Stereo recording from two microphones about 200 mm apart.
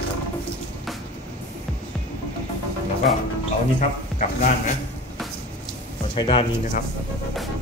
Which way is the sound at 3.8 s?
40° left (ahead or behind).